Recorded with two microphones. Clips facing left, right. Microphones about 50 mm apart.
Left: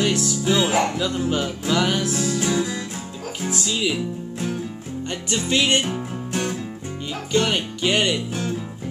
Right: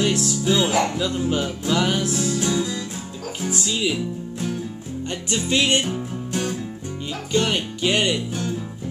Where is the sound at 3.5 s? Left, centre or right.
Centre.